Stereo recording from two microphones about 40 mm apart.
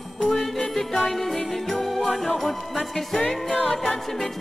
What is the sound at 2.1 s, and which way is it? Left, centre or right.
Music, centre.